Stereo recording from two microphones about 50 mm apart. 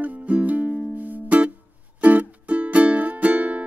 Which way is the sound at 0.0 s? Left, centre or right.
Right.